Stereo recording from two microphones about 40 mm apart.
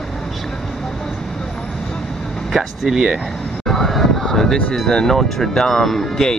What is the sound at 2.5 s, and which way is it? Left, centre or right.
Speech, centre.